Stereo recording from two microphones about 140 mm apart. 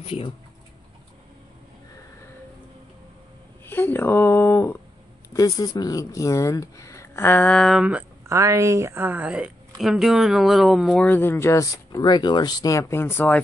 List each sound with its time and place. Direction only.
0.0 s speech: 45° left (ahead or behind)
3.6 s speech: 15° left (ahead or behind)
8.3 s a woman's voice: 20° right (ahead or behind); by 11.1 s centre (ahead or behind)
11.1 s speech: 15° left (ahead or behind)